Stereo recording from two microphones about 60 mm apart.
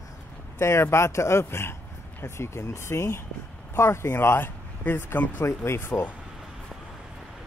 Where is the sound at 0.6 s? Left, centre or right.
Left.